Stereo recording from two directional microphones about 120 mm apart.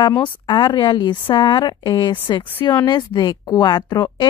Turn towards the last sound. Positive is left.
turn(degrees=35)  # may be behind; listen again after turning